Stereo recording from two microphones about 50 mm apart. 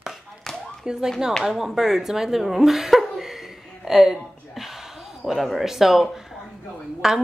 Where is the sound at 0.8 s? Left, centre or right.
Centre.